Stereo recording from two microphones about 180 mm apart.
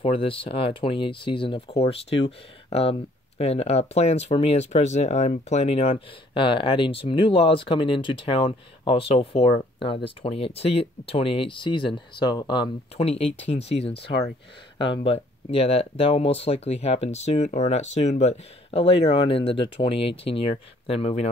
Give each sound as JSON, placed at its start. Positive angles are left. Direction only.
{"t": 0.0, "sound": "speech", "side_deg": 30}